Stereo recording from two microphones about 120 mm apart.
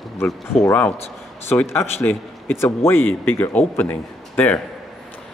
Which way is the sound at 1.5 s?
20° left (ahead or behind).